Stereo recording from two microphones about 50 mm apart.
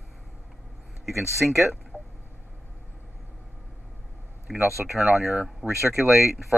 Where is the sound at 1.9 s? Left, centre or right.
Right.